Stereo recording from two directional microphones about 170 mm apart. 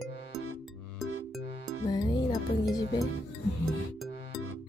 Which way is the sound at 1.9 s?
25° left (ahead or behind).